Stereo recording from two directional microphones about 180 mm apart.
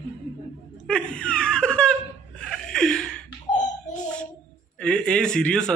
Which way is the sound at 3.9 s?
5° left (ahead or behind).